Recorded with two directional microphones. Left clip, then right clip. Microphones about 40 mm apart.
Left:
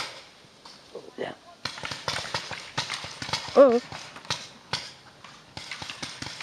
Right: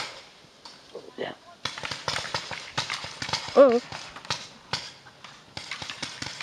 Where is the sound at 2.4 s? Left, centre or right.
Right.